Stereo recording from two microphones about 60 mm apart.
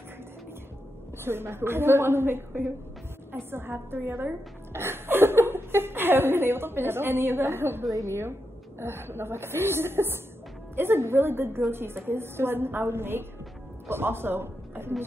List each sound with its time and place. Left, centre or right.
1.2 s a woman's voice: right
7.8 s a woman's voice: right